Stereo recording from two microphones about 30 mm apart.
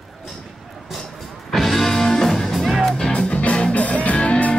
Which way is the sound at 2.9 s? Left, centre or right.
Left.